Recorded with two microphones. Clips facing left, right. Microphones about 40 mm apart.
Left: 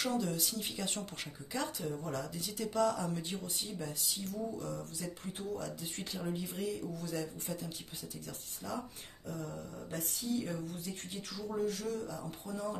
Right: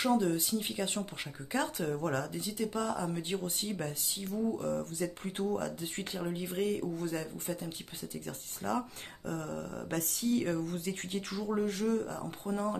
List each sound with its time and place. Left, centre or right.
0.0 s speech: right
1.5 s speech: right
1.9 s speech: right
2.3 s speech: centre
3.2 s speech: right
4.1 s speech: right
6.1 s speech: centre
6.4 s speech: right
8.3 s speech: right
9.3 s a sound: right
11.4 s speech: right